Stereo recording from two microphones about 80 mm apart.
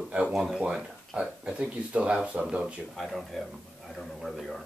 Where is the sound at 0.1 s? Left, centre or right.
Centre.